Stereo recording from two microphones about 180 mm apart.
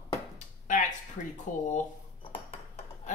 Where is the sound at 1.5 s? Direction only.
45° left (ahead or behind).